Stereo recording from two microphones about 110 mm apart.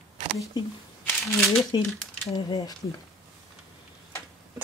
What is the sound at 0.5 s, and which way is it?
Speech, 35° left (ahead or behind).